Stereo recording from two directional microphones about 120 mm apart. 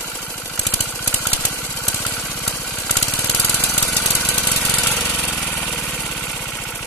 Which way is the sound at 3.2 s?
15° left (ahead or behind).